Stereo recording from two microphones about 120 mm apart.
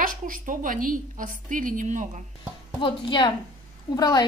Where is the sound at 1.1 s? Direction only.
90° right.